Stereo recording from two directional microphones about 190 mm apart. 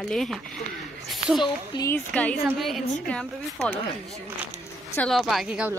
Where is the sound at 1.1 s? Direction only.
Centre (ahead or behind).